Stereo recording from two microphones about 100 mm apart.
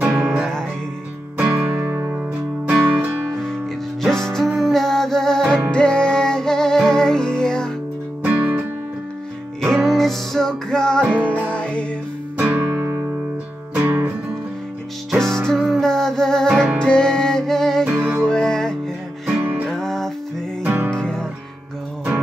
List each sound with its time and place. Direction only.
0.0 s music: 10° right (ahead or behind)
4.0 s music: 5° left (ahead or behind)
8.2 s music: 20° right (ahead or behind)
9.8 s music: centre (ahead or behind)
12.4 s music: 20° right (ahead or behind)
15.0 s music: 5° left (ahead or behind)
17.8 s music: 15° right (ahead or behind)
18.2 s music: 10° left (ahead or behind)
19.3 s music: 20° right (ahead or behind)
19.7 s music: 5° left (ahead or behind)
20.6 s music: 20° right (ahead or behind)
20.9 s music: 10° left (ahead or behind)